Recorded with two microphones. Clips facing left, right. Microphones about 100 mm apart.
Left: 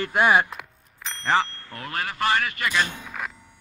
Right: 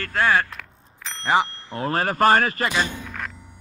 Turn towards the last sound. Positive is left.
turn(degrees=10)  # may be behind; listen again after turning